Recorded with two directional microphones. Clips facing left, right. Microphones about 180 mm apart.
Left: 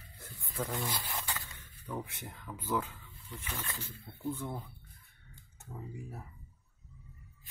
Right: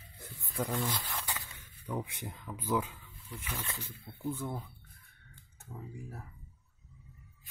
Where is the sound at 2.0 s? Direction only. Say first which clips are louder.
Right 2 dB; 15° right (ahead or behind).